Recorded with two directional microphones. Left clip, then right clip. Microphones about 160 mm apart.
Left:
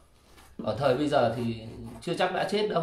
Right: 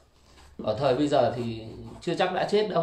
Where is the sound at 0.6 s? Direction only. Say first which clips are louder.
Right 2 dB; 10° right (ahead or behind).